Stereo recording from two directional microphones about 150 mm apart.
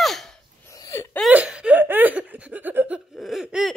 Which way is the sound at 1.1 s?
5° right (ahead or behind).